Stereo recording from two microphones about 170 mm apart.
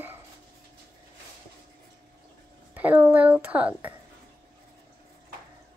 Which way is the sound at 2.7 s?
10° right (ahead or behind).